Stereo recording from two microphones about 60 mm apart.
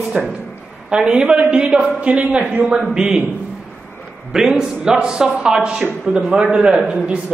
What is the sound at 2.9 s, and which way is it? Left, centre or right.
Speech, centre.